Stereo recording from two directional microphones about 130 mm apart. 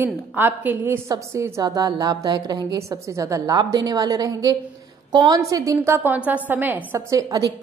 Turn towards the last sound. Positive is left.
turn(degrees=-25)  # may be behind; listen again after turning